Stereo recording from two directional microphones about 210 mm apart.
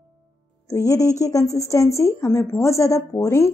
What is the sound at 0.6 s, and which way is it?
Speech, 15° left (ahead or behind).